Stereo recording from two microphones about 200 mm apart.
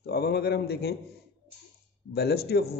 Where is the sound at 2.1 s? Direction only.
55° left (ahead or behind).